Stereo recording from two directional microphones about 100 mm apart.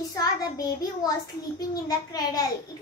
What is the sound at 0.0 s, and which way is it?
A child's voice, 40° left (ahead or behind).